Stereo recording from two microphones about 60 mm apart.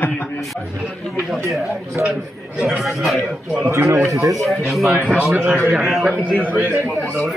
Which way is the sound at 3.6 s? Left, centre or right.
Right.